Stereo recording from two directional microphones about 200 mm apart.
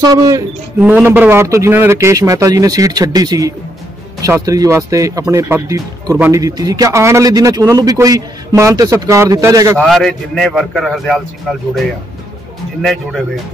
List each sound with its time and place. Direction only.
0.0 s speech: 20° right (ahead or behind)
9.8 s a man's voice: centre (ahead or behind)